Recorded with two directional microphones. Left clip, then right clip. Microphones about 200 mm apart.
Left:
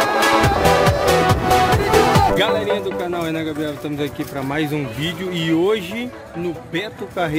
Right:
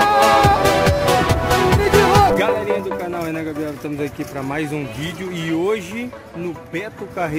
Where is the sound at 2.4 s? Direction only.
Centre (ahead or behind).